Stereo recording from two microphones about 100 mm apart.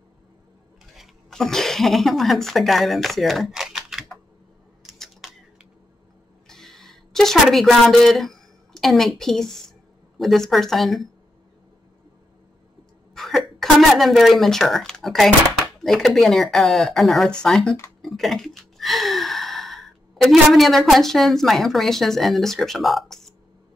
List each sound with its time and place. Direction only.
0.9 s speech: centre (ahead or behind)
4.8 s typing: centre (ahead or behind)
6.4 s a sound: 5° left (ahead or behind)
10.1 s speech: centre (ahead or behind)
13.1 s speech: 5° left (ahead or behind)
18.0 s gasp: centre (ahead or behind)